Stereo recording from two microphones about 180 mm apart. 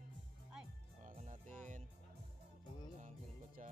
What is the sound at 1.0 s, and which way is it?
Music, 40° right (ahead or behind).